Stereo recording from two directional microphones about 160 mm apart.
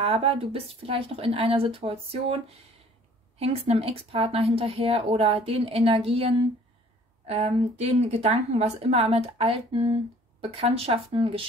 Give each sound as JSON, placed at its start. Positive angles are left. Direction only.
{"t": 0.0, "sound": "a woman's voice", "side_deg": -35}